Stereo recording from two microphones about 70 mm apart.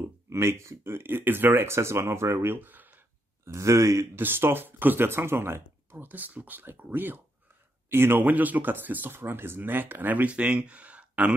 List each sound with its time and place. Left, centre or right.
0.3 s speech: right
3.4 s speech: right
4.1 s speech: right